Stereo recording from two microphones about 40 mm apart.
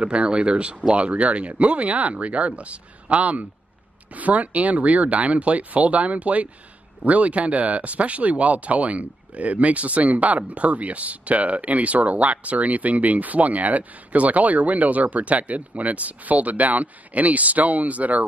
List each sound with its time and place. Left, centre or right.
0.0 s speech: right